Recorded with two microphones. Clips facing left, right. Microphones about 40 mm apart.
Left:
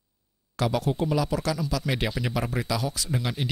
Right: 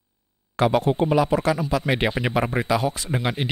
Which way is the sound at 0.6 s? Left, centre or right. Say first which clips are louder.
Right 6 dB; right.